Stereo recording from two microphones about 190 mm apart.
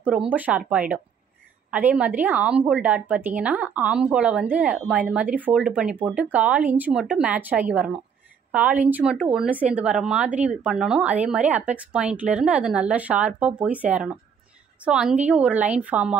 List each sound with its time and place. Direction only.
0.0 s a woman's voice: 5° right (ahead or behind)